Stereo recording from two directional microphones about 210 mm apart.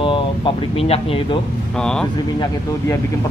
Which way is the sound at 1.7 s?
5° left (ahead or behind).